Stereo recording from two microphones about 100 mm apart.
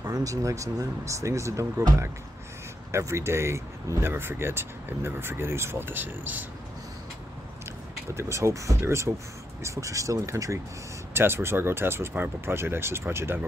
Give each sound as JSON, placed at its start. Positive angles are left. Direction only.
{"t": 0.0, "sound": "speech", "side_deg": -35}
{"t": 2.9, "sound": "speech", "side_deg": -30}
{"t": 8.1, "sound": "speech", "side_deg": -30}